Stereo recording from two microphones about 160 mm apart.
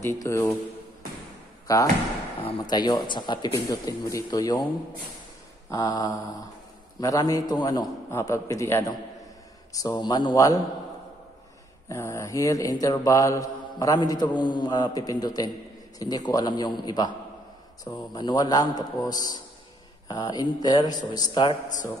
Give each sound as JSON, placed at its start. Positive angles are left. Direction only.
{"t": 0.0, "sound": "a man's voice", "side_deg": 20}
{"t": 2.4, "sound": "mantra", "side_deg": 25}
{"t": 5.7, "sound": "mantra", "side_deg": 25}
{"t": 8.1, "sound": "a man's voice", "side_deg": 20}
{"t": 9.7, "sound": "mantra", "side_deg": 20}
{"t": 11.9, "sound": "mantra", "side_deg": 20}